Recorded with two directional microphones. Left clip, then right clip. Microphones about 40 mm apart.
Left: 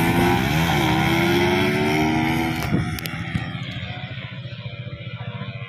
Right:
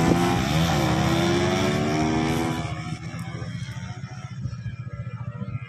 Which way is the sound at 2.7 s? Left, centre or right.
Centre.